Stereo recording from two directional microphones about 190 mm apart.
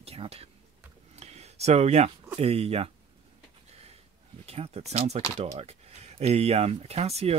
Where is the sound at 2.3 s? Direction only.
30° right (ahead or behind).